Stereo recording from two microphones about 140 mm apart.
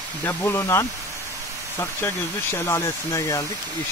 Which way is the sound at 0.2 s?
15° left (ahead or behind).